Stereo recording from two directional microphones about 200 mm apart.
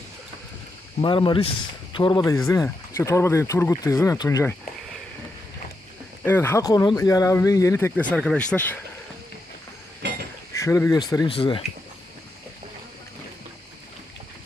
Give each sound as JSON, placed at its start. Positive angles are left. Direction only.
{"t": 1.0, "sound": "speech", "side_deg": 25}
{"t": 6.2, "sound": "speech", "side_deg": 10}
{"t": 10.6, "sound": "speech", "side_deg": 15}